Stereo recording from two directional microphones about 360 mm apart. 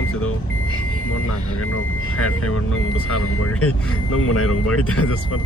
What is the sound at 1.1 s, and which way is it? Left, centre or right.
Speech, left.